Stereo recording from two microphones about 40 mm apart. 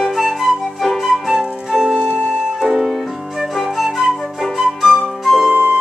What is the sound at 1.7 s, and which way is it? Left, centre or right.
Music, centre.